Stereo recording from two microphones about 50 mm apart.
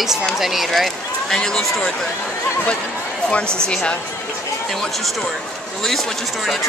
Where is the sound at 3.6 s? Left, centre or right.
Centre.